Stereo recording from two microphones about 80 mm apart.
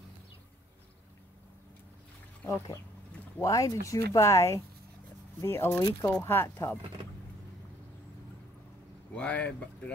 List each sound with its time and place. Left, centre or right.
3.3 s speech: left
9.1 s speech: centre